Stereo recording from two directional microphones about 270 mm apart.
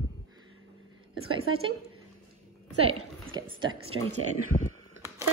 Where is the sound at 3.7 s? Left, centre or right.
Right.